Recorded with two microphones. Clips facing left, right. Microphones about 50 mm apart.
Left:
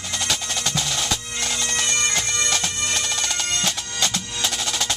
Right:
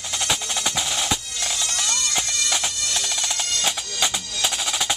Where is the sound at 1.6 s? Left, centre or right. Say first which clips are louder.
Left 4 dB; left.